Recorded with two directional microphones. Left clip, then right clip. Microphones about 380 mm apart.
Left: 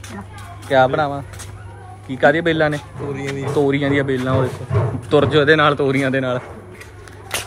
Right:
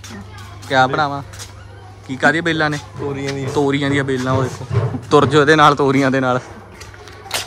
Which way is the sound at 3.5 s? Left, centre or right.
Centre.